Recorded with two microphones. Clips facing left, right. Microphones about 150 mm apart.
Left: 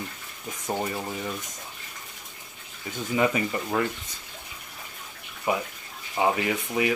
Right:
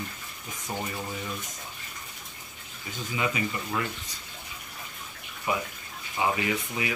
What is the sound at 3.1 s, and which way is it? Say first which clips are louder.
Speech: left 6 dB; 45° left (ahead or behind).